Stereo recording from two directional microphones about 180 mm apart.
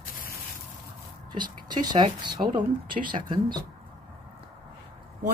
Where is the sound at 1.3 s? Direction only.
25° right (ahead or behind).